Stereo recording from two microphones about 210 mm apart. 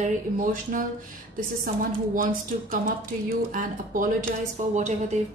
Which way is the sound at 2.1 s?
40° right (ahead or behind).